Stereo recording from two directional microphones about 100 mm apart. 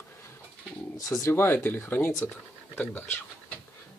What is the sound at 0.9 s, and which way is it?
Speech, 30° left (ahead or behind).